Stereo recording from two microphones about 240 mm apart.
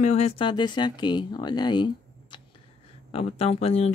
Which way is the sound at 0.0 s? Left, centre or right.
Left.